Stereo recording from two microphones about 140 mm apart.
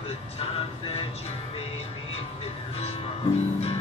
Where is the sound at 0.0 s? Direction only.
40° left (ahead or behind).